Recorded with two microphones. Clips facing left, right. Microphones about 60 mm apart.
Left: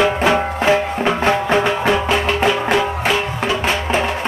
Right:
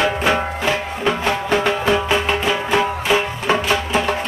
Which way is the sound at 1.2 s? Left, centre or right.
Left.